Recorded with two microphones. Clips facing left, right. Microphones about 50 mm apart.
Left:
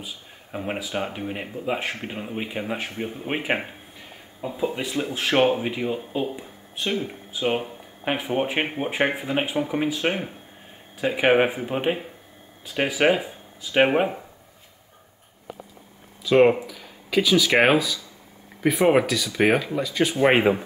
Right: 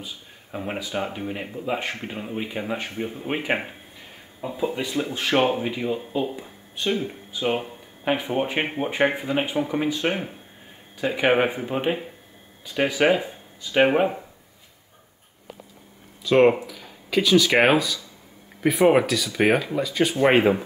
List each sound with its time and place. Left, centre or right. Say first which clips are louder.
0.0 s speech: even; centre
16.3 s speech: even; centre